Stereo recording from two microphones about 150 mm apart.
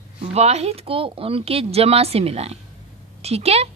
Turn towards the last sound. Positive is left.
turn(degrees=-45)  # may be behind; listen again after turning